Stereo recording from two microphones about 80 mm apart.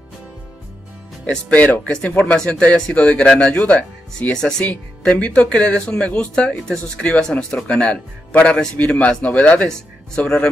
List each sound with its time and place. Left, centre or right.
1.2 s speech: centre
5.1 s speech: centre